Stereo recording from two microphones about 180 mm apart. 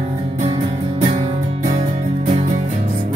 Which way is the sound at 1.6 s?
35° right (ahead or behind).